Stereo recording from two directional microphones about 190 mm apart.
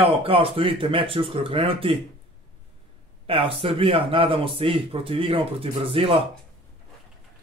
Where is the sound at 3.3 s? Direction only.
30° right (ahead or behind).